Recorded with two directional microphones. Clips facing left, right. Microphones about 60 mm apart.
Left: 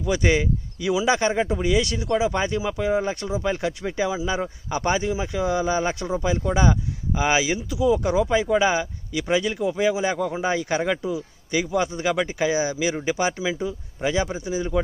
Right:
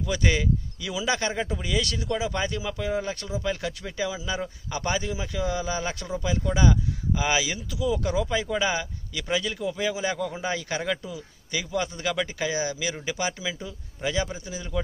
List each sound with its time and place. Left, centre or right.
0.0 s speech: left